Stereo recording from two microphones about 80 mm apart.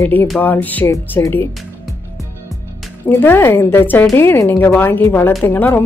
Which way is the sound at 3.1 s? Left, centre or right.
Left.